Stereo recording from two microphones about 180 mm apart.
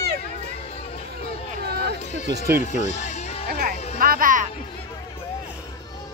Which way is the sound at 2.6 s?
40° left (ahead or behind).